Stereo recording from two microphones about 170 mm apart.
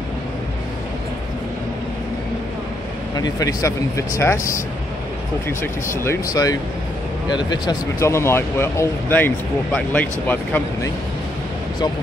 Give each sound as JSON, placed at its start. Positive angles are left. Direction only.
{"t": 3.2, "sound": "speech", "side_deg": 20}
{"t": 5.6, "sound": "speech", "side_deg": 15}